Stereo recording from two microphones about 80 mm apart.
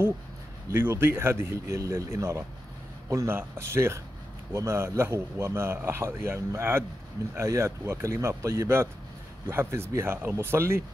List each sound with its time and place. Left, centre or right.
0.7 s a man's voice: right